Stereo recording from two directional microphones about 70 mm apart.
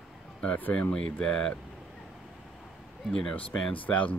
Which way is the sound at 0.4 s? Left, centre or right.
Centre.